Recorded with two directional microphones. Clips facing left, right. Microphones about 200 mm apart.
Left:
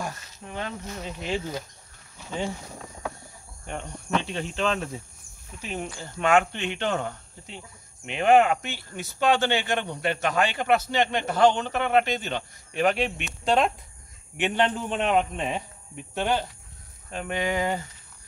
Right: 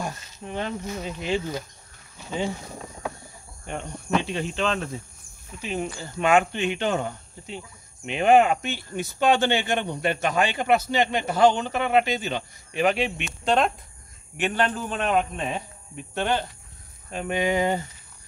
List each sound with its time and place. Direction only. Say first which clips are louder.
0.0 s cricket: right 2 dB; 25° right (ahead or behind)
0.8 s speech: right 3 dB; 10° right (ahead or behind)
3.6 s cricket: right 2 dB; 5° right (ahead or behind)
5.6 s speech: right 4 dB; centre (ahead or behind)
14.3 s speech: even; 20° left (ahead or behind)
16.2 s speech: right 1 dB; 10° left (ahead or behind)
17.1 s speech: right 3 dB; 15° right (ahead or behind)